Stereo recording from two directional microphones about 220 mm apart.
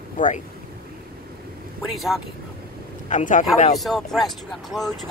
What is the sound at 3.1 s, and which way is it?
Speech, 35° left (ahead or behind).